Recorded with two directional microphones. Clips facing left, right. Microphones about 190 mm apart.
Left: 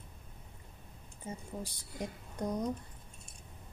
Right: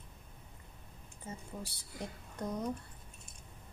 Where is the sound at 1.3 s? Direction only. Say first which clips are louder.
Left 3 dB; 15° left (ahead or behind).